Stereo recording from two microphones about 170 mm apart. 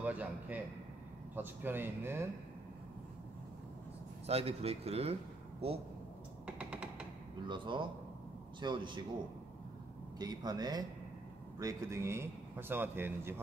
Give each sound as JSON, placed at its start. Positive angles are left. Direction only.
{"t": 0.0, "sound": "a man's voice", "side_deg": -10}
{"t": 4.3, "sound": "speech", "side_deg": -40}
{"t": 6.4, "sound": "a sound", "side_deg": -5}
{"t": 7.4, "sound": "speech", "side_deg": -30}
{"t": 10.1, "sound": "speech", "side_deg": -25}